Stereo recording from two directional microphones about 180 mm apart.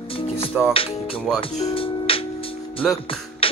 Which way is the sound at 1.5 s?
35° left (ahead or behind).